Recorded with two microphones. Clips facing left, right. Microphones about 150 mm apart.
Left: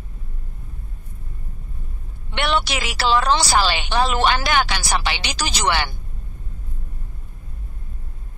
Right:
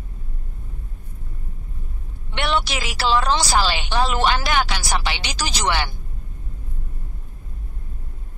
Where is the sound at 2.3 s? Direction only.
70° left (ahead or behind).